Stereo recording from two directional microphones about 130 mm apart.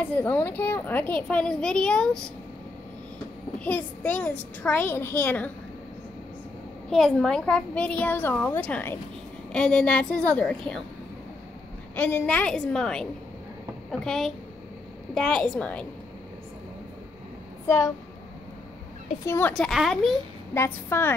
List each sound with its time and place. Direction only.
0.0 s a woman's voice: 15° left (ahead or behind)
3.5 s a woman's voice: 10° left (ahead or behind)
6.9 s a woman's voice: 5° left (ahead or behind)
11.9 s a woman's voice: 10° left (ahead or behind)
17.6 s a woman's voice: 25° left (ahead or behind)
19.2 s a woman's voice: 20° left (ahead or behind)
19.5 s a child's voice: centre (ahead or behind)
20.5 s a woman's voice: 20° left (ahead or behind)